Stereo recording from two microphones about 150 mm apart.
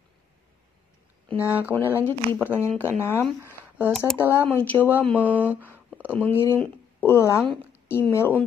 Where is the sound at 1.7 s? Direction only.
15° right (ahead or behind).